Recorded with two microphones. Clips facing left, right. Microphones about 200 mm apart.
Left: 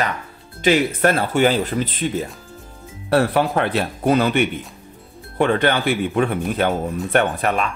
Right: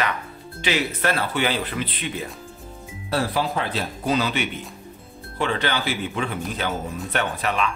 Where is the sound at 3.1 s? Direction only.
65° left (ahead or behind).